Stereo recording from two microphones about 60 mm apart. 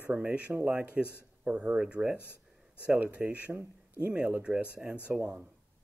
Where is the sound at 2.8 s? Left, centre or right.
Right.